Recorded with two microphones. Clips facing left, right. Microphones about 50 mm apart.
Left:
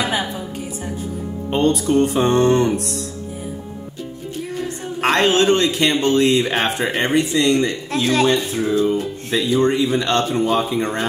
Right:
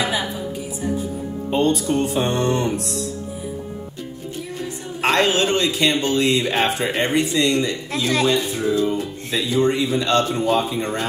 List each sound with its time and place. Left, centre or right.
1.5 s speech: left
4.6 s speech: left
9.3 s speech: left